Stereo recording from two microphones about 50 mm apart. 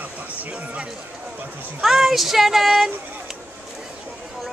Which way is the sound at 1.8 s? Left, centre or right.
Centre.